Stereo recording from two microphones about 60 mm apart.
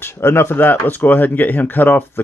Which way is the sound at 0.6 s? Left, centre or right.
Left.